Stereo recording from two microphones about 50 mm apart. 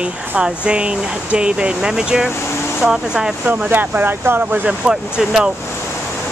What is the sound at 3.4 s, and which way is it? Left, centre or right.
Speech, right.